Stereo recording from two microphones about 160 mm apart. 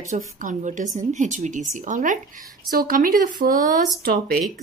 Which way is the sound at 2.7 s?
65° right (ahead or behind).